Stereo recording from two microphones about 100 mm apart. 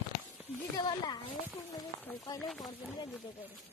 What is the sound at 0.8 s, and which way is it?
Speech, 45° left (ahead or behind).